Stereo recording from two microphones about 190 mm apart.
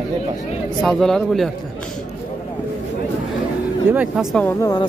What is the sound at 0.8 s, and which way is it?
Speech, centre (ahead or behind).